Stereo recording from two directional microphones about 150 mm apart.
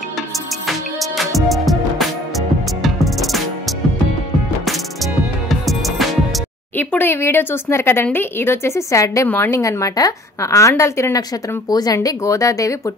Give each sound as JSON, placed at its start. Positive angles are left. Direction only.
{"t": 0.7, "sound": "music", "side_deg": 0}
{"t": 6.8, "sound": "a woman's voice", "side_deg": 10}